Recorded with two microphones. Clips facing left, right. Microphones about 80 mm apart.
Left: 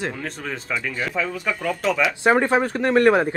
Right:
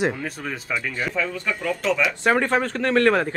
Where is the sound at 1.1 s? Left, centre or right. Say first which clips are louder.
Left 1 dB; centre.